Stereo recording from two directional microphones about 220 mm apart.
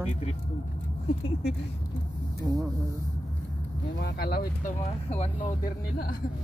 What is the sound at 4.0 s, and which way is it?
Speech, 45° left (ahead or behind).